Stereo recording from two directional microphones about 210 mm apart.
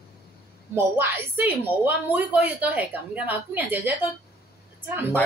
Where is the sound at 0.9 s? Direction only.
10° right (ahead or behind).